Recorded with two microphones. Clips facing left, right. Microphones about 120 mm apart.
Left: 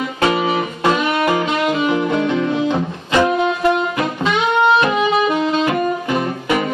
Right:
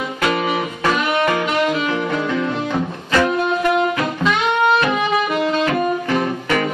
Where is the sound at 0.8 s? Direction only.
15° left (ahead or behind).